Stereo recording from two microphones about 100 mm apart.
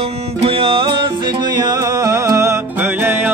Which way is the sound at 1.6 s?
40° right (ahead or behind).